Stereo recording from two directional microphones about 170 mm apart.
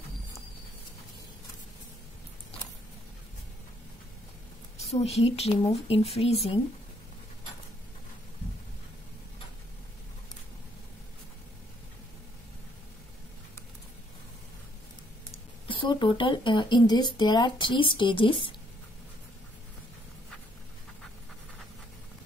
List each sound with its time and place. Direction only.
4.7 s speech: 40° left (ahead or behind)
15.3 s speech: 30° left (ahead or behind)